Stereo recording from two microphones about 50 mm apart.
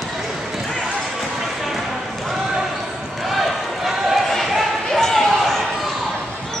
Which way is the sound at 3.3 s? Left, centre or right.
Centre.